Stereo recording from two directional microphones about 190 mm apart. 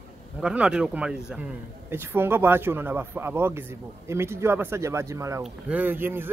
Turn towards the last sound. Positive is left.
turn(degrees=-10)  # may be behind; listen again after turning